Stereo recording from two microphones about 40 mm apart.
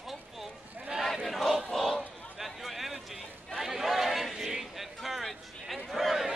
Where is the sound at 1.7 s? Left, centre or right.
Centre.